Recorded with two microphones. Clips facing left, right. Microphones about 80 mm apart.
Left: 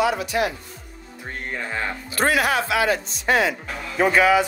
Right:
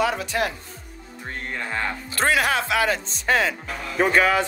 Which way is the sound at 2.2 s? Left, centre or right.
Left.